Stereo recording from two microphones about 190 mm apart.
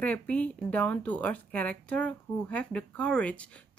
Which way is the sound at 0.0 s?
5° left (ahead or behind).